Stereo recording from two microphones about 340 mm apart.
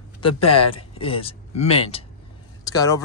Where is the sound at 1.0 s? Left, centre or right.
Centre.